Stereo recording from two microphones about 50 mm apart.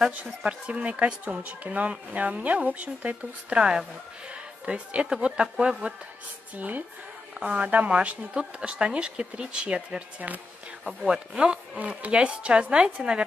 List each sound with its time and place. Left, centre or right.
0.5 s speech: right
3.5 s speech: centre
4.3 s music: right
5.1 s speech: centre
6.5 s speech: right
7.3 s speech: right
10.9 s speech: centre
11.8 s speech: right